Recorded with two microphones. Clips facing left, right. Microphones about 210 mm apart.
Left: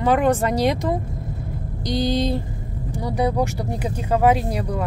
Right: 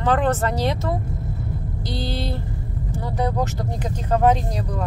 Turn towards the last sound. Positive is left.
turn(degrees=10)  # may be behind; listen again after turning